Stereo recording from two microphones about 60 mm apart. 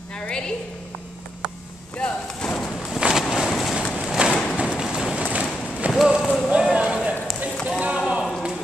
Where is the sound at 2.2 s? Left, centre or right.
Centre.